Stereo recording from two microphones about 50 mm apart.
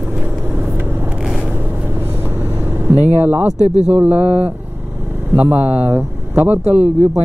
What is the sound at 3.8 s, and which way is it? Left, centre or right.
Speech, right.